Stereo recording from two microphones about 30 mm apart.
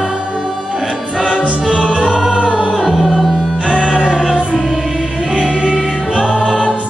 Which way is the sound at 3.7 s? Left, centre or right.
Right.